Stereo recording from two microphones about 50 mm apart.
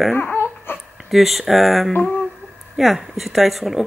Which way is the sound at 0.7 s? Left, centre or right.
Left.